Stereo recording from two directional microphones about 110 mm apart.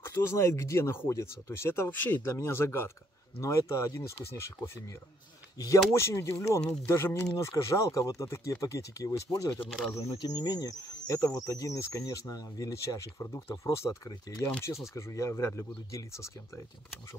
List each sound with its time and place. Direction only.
0.0 s speech: 20° left (ahead or behind)
10.0 s speech: 40° left (ahead or behind)